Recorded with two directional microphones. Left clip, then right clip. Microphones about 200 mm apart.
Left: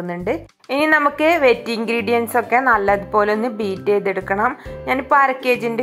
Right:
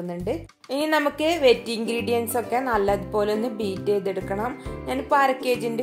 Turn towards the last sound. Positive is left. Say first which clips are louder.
# left 5 dB
turn(degrees=10)  # may be behind; listen again after turning